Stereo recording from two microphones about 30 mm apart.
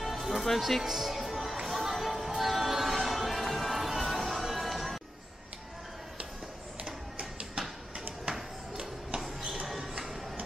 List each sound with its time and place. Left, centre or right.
0.0 s music: centre
6.8 s printer: right